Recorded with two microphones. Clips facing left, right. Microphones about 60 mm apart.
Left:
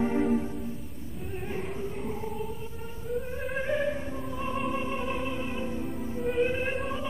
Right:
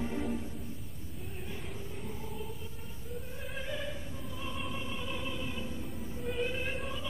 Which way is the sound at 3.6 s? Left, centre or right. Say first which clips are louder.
Left 11 dB; left.